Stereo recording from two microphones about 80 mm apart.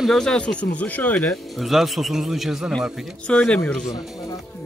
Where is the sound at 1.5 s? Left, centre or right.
Centre.